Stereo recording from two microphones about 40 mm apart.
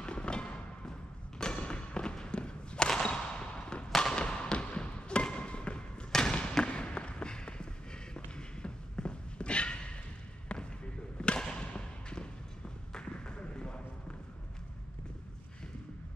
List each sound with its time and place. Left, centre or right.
0.0 s music: left
1.4 s thump: left
2.9 s a sound: left
3.9 s fireworks: centre
4.2 s music: left
5.5 s basketball bounce: left
6.1 s a sound: left
10.5 s basketball bounce: left
11.1 s a sound: left